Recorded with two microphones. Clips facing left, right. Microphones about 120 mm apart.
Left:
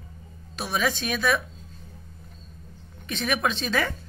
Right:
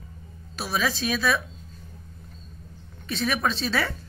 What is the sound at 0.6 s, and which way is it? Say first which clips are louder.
Speech: even; 15° left (ahead or behind).